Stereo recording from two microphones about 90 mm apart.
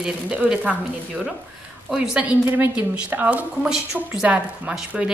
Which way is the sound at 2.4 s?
20° right (ahead or behind).